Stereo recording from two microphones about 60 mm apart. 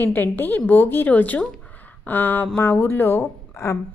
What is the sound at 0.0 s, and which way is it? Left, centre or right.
A woman's voice, left.